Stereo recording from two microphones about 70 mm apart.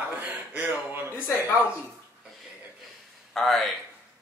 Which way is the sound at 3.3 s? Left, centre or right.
Centre.